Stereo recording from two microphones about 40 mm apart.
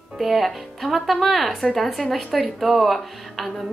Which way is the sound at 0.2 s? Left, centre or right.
Centre.